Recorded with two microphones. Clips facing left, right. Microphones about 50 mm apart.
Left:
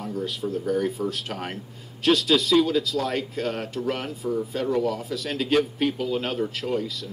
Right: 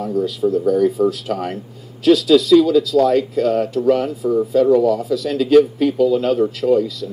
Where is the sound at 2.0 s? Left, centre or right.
Left.